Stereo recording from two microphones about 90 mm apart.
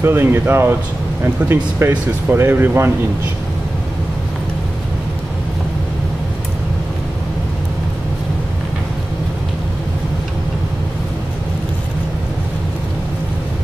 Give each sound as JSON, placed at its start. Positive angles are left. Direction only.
{"t": 0.0, "sound": "speech", "side_deg": -25}